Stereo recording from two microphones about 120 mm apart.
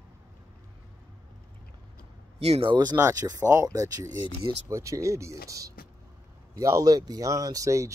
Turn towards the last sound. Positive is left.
turn(degrees=-25)  # may be behind; listen again after turning